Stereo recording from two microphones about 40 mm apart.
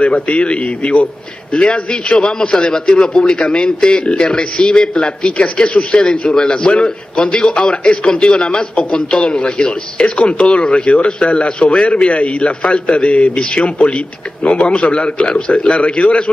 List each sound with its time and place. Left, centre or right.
0.0 s a man's voice: left
13.3 s a man's voice: centre
13.7 s a man's voice: left